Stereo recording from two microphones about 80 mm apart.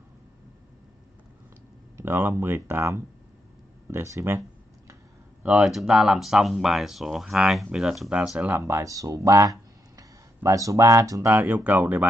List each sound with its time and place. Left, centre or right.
2.0 s speech: right
5.6 s speech: centre
8.5 s speech: right
11.2 s speech: right